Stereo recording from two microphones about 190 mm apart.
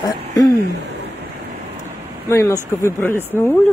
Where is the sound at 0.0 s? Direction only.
20° left (ahead or behind).